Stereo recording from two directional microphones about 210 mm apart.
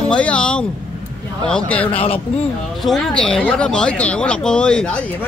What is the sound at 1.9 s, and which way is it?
Speech, 25° left (ahead or behind).